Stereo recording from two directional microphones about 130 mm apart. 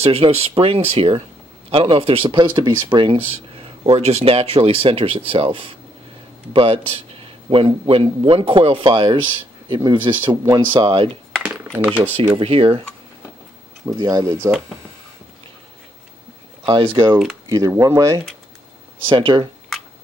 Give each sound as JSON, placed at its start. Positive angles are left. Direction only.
{"t": 0.0, "sound": "a man's voice", "side_deg": -50}
{"t": 11.6, "sound": "a sound", "side_deg": -5}
{"t": 12.4, "sound": "a man's voice", "side_deg": -45}
{"t": 13.8, "sound": "speech", "side_deg": -30}
{"t": 16.6, "sound": "speech", "side_deg": -40}
{"t": 17.5, "sound": "speech", "side_deg": -30}
{"t": 19.0, "sound": "speech", "side_deg": -40}